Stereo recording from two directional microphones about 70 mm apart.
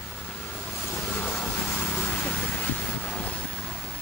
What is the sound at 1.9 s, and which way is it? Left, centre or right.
Vehicle, left.